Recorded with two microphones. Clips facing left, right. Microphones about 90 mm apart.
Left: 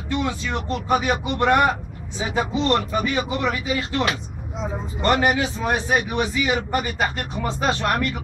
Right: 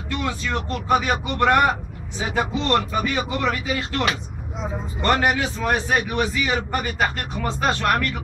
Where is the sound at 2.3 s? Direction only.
20° left (ahead or behind).